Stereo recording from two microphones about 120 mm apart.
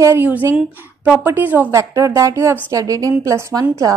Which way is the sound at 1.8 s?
25° right (ahead or behind).